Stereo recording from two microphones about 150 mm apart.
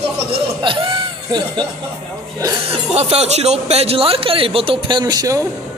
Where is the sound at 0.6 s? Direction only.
35° right (ahead or behind).